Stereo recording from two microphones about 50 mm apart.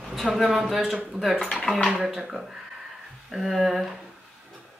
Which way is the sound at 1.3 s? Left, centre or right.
Centre.